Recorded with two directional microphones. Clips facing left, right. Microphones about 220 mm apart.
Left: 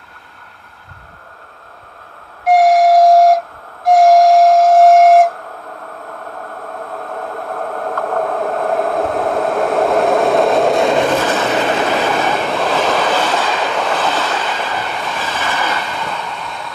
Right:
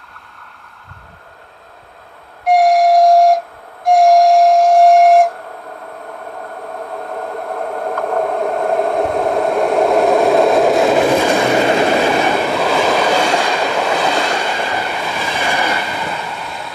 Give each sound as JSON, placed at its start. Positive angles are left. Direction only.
{"t": 2.4, "sound": "train", "side_deg": 0}
{"t": 7.2, "sound": "a sound", "side_deg": 0}
{"t": 7.6, "sound": "a sound", "side_deg": -15}
{"t": 8.2, "sound": "train", "side_deg": 0}
{"t": 12.4, "sound": "train", "side_deg": 0}
{"t": 12.7, "sound": "train", "side_deg": -10}